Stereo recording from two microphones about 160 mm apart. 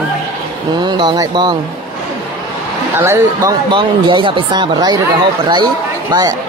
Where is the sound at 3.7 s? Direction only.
30° right (ahead or behind).